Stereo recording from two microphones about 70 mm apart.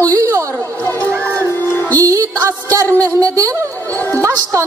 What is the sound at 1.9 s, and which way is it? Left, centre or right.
Music, right.